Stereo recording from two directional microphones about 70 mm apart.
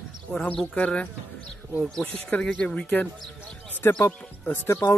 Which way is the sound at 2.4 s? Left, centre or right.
Centre.